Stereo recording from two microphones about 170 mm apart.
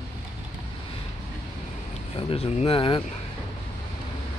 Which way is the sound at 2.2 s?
35° left (ahead or behind).